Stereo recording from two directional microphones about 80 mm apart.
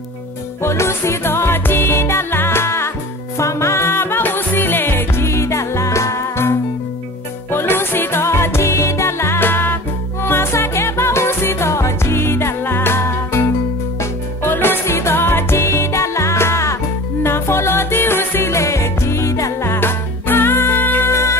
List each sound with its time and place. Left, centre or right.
0.6 s music: left
7.5 s music: left
21.1 s music: left